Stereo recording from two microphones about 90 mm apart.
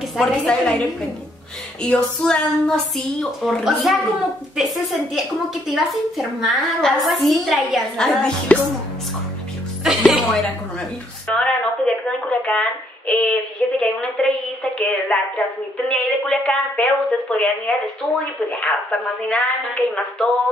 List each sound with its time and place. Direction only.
0.2 s a woman's voice: 5° left (ahead or behind)
2.0 s a woman's voice: 10° left (ahead or behind)
8.5 s a woman's voice: 15° left (ahead or behind)
10.0 s a woman's voice: centre (ahead or behind)